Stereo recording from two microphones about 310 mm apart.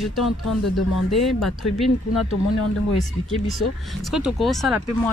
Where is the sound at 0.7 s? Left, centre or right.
Left.